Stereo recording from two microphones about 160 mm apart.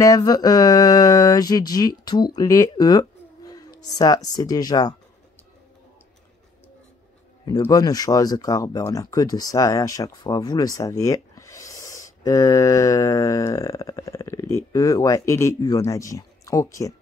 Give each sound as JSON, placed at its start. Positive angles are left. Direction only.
{"t": 0.0, "sound": "speech", "side_deg": 25}
{"t": 7.6, "sound": "speech", "side_deg": 25}